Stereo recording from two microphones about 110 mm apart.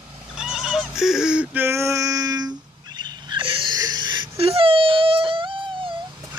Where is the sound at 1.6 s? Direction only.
25° right (ahead or behind); by 3.7 s 50° right (ahead or behind).